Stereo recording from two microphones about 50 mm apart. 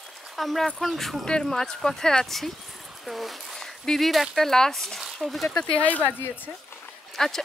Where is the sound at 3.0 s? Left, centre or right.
Centre.